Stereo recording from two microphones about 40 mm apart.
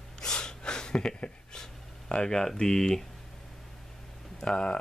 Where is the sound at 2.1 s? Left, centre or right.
Centre.